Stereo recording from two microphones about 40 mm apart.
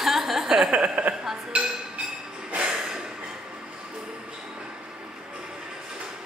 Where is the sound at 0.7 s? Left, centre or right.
Right.